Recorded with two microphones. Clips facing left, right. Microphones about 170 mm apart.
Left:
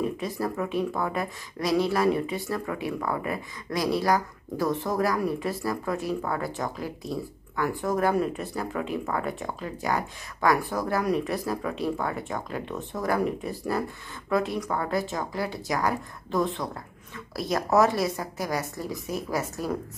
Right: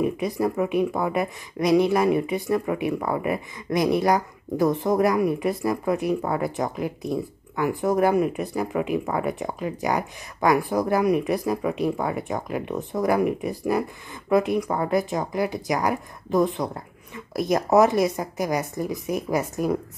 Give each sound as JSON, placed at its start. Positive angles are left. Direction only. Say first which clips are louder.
{"t": 0.0, "sound": "speech", "louder": "right 5 dB", "side_deg": -15}